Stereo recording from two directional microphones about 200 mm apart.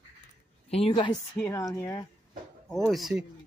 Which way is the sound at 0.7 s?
30° left (ahead or behind).